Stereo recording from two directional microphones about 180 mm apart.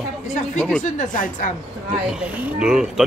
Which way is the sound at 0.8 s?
45° left (ahead or behind).